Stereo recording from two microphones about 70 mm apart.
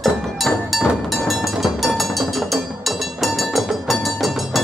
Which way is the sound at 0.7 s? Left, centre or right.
Centre.